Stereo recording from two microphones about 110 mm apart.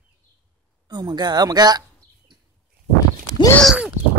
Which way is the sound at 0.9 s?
40° right (ahead or behind).